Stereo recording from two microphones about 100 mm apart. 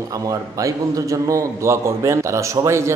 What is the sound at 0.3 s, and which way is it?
Speech, 35° right (ahead or behind).